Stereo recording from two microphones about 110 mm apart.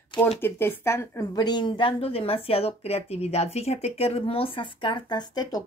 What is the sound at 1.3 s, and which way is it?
Speech, 40° left (ahead or behind).